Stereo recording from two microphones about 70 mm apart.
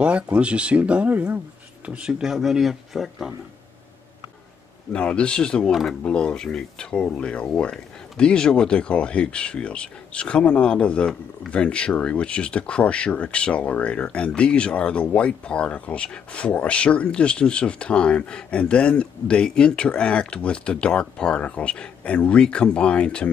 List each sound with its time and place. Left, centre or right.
0.0 s speech: centre
4.9 s speech: centre
5.7 s speech: centre
6.0 s speech: centre